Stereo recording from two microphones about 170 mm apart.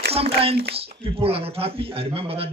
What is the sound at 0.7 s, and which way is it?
Speech, 35° right (ahead or behind).